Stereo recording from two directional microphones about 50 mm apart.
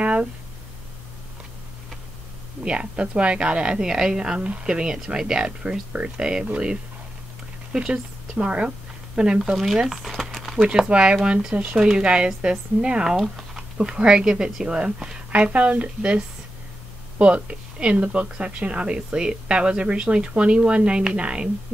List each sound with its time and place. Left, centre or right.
0.0 s a sound: right
2.6 s a woman's voice: right
7.7 s speech: centre
9.6 s speech: centre
10.7 s a woman's voice: right
17.2 s a woman's voice: right